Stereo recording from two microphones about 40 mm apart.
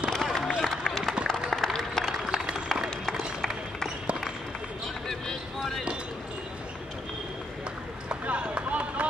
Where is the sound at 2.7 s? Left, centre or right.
Centre.